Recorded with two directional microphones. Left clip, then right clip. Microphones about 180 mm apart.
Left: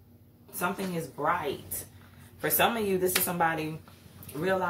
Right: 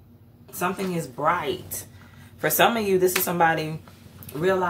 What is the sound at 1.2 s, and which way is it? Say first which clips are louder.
Speech: right 6 dB; 25° right (ahead or behind).